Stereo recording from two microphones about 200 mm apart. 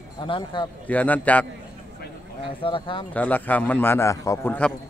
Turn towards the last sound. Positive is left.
turn(degrees=10)  # may be behind; listen again after turning